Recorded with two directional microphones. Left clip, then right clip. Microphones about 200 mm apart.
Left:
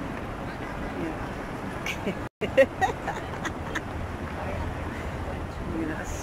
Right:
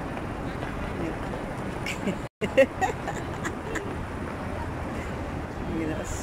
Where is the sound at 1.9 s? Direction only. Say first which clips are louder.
Left 1 dB; centre (ahead or behind).